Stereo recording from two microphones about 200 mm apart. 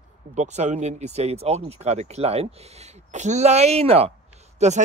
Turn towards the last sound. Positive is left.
turn(degrees=-35)  # may be behind; listen again after turning